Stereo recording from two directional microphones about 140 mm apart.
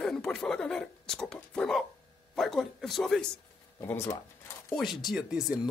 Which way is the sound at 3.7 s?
20° left (ahead or behind).